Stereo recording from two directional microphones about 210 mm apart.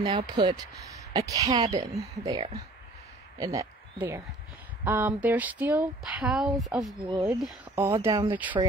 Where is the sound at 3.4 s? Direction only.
15° right (ahead or behind).